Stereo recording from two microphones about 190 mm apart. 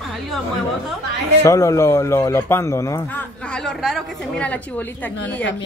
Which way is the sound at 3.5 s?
5° left (ahead or behind).